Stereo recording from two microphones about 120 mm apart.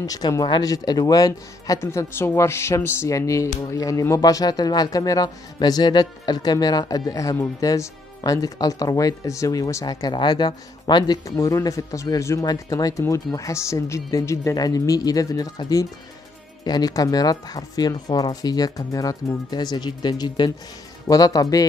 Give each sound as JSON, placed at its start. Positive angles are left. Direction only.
{"t": 0.0, "sound": "speech", "side_deg": 30}